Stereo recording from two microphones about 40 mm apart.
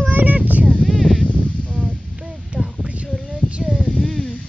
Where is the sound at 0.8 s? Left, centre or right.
Centre.